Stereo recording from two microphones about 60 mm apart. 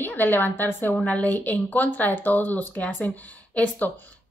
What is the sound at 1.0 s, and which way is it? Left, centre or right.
A woman's voice, left.